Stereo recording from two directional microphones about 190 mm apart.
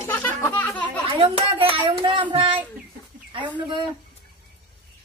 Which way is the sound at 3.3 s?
25° right (ahead or behind).